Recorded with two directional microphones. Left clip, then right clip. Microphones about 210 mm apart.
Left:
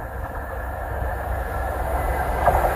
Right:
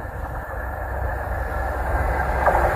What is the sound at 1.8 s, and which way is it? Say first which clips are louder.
Train: right 1 dB; 50° left (ahead or behind).